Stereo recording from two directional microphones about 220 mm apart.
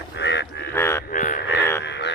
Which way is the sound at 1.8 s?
50° left (ahead or behind).